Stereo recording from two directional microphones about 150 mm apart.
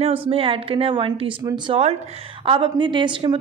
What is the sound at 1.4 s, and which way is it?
Speech, 25° right (ahead or behind).